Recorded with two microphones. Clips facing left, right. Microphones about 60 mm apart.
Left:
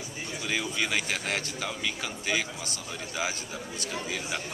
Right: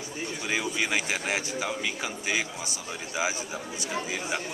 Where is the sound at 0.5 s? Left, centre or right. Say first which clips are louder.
Right 1 dB; centre.